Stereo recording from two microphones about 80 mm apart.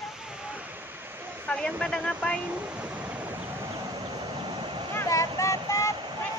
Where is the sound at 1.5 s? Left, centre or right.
Centre.